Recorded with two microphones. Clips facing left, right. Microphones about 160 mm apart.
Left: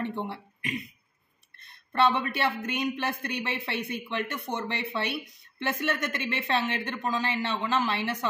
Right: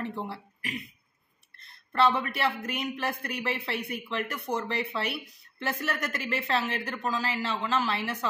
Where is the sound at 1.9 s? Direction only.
25° left (ahead or behind).